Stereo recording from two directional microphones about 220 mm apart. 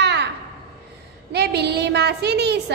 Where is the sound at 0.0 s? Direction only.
50° right (ahead or behind).